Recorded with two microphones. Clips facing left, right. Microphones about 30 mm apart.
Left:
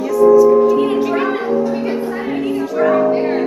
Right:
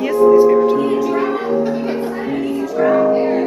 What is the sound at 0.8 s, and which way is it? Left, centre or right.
Speech, left.